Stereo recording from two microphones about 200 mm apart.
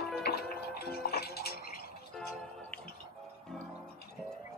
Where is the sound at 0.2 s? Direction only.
50° left (ahead or behind).